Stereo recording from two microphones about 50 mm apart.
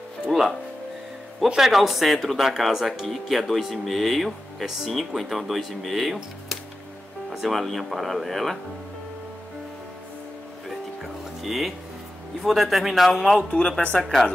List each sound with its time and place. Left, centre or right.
0.3 s music: centre
1.6 s speech: centre
7.2 s speech: centre
11.4 s speech: centre
13.5 s speech: left